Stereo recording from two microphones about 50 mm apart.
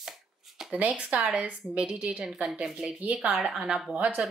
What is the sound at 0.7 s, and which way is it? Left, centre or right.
A woman's voice, right.